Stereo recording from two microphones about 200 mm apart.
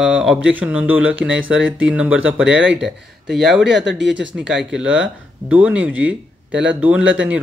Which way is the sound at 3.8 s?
65° right (ahead or behind).